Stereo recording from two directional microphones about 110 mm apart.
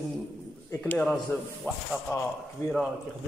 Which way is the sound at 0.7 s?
15° left (ahead or behind).